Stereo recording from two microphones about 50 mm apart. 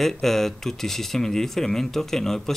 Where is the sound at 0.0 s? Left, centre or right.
Centre.